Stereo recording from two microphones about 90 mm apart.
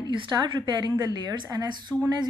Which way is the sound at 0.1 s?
60° right (ahead or behind).